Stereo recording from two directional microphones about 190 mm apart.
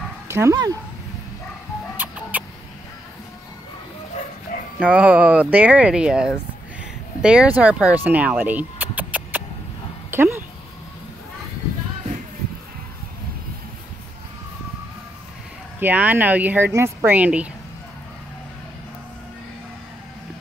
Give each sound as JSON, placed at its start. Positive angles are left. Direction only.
{"t": 0.3, "sound": "speech", "side_deg": -15}
{"t": 2.0, "sound": "music", "side_deg": -10}
{"t": 4.5, "sound": "dog", "side_deg": 45}
{"t": 4.8, "sound": "speech", "side_deg": -5}
{"t": 6.8, "sound": "a sound", "side_deg": -5}
{"t": 10.1, "sound": "speech", "side_deg": -10}
{"t": 15.8, "sound": "speech", "side_deg": -10}